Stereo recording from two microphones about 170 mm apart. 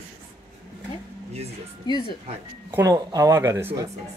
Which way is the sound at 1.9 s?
25° left (ahead or behind).